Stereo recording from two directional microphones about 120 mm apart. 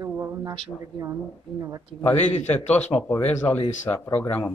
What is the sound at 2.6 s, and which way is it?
Speech, 70° left (ahead or behind).